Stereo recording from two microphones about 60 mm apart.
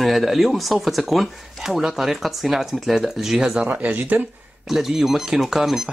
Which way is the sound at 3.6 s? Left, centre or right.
Right.